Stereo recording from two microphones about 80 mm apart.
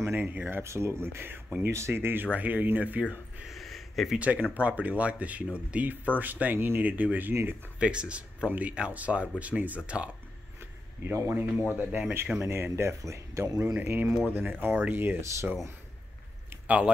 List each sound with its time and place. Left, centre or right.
0.0 s speech: right
3.4 s a sound: centre
4.2 s speech: centre
11.1 s speech: right
13.7 s speech: right
16.6 s speech: centre